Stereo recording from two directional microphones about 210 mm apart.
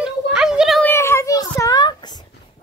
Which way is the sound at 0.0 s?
5° right (ahead or behind).